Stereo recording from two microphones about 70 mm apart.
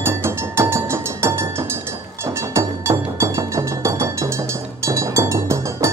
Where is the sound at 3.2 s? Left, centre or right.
Right.